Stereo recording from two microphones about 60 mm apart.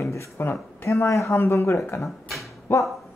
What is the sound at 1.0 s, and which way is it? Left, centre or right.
Speech, left.